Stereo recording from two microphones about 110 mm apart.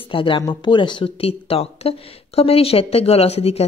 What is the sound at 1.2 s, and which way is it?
Speech, 60° left (ahead or behind).